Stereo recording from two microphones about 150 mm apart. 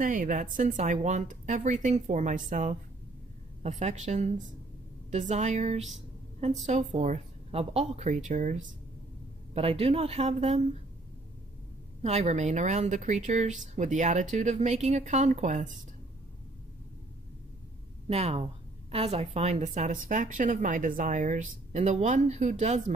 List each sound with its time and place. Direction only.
0.0 s a woman's voice: 65° right (ahead or behind)
9.5 s a woman's voice: 40° right (ahead or behind)
12.0 s a woman's voice: 45° right (ahead or behind)
18.0 s a woman's voice: 45° right (ahead or behind)